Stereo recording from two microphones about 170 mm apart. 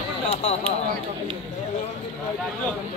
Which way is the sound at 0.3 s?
35° left (ahead or behind).